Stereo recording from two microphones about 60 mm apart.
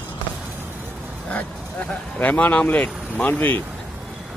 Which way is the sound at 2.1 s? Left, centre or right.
Left.